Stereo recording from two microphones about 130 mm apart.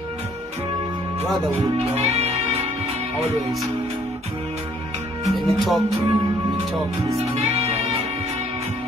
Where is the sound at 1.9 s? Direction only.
55° right (ahead or behind).